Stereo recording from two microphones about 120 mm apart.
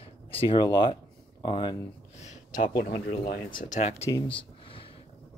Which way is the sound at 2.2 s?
75° left (ahead or behind).